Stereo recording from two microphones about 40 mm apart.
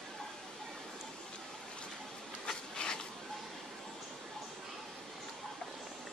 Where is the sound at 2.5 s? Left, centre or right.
Centre.